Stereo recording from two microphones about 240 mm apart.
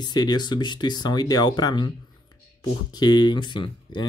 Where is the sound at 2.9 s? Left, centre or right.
Centre.